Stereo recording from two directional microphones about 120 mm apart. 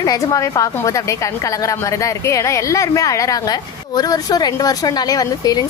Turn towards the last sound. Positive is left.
turn(degrees=30)  # may be behind; listen again after turning